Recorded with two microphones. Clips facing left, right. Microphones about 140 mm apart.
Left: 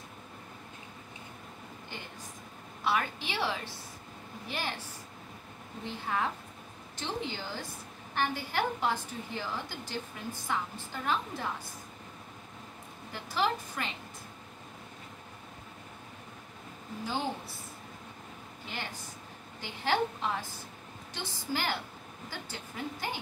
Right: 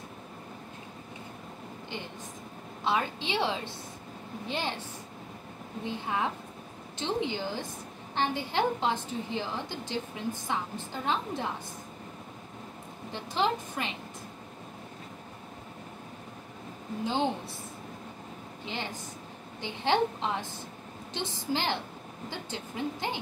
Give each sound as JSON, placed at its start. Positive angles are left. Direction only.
{"t": 2.8, "sound": "a woman's voice", "side_deg": -20}
{"t": 5.9, "sound": "a woman's voice", "side_deg": -20}
{"t": 13.1, "sound": "a woman's voice", "side_deg": -20}
{"t": 17.0, "sound": "a woman's voice", "side_deg": -20}
{"t": 19.6, "sound": "a woman's voice", "side_deg": -20}